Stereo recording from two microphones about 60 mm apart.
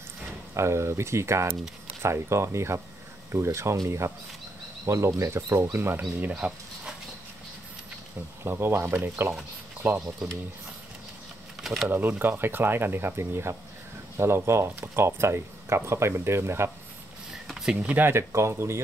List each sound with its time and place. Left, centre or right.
0.6 s speech: right
8.5 s speech: right
11.6 s speech: centre
11.9 s speech: right
17.3 s a sound: centre
18.0 s speech: right